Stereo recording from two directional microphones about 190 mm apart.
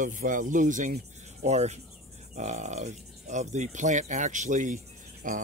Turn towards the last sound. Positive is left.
turn(degrees=-45)  # may be behind; listen again after turning